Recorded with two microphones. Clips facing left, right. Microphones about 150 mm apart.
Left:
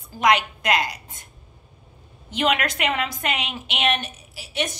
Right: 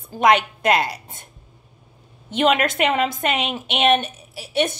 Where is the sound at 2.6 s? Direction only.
25° right (ahead or behind).